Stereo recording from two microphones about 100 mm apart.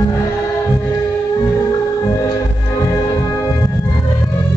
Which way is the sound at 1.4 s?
40° left (ahead or behind).